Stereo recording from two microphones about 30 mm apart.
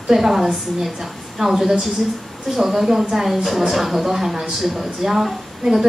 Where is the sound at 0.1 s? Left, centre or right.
Centre.